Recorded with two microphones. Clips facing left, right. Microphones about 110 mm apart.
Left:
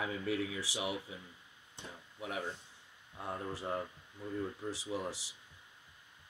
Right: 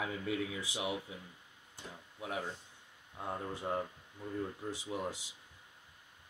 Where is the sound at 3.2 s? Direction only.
20° right (ahead or behind).